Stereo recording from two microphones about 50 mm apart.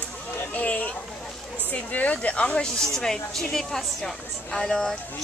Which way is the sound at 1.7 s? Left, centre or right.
Left.